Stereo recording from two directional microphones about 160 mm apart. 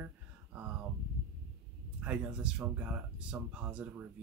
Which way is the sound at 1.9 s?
5° right (ahead or behind).